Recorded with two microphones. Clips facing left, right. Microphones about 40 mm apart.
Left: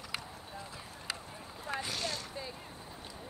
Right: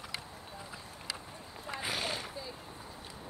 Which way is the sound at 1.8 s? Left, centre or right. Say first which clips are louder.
Right 2 dB; right.